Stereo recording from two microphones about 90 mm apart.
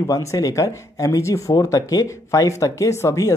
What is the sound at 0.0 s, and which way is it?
Speech, 40° left (ahead or behind).